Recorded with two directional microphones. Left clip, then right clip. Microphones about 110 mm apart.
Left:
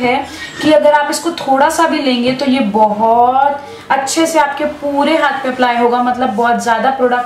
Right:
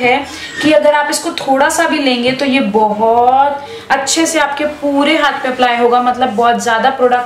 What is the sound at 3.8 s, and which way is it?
A woman's voice, 15° right (ahead or behind).